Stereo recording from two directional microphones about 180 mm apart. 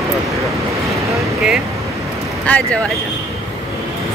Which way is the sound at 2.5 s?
5° left (ahead or behind).